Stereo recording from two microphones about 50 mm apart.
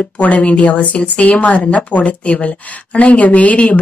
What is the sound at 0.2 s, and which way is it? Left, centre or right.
Speech, left.